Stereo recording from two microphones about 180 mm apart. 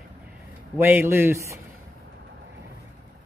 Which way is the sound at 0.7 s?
15° right (ahead or behind).